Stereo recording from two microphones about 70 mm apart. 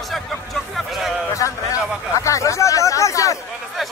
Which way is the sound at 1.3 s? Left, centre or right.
Left.